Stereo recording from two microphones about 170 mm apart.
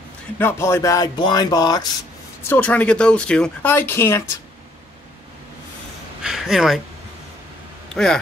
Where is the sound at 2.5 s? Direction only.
10° left (ahead or behind).